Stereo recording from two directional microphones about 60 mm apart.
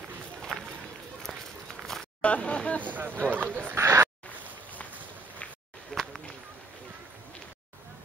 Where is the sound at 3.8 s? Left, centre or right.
Right.